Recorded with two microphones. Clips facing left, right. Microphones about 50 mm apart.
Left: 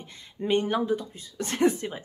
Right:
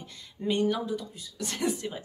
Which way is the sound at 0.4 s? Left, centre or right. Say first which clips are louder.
Left 2 dB; left.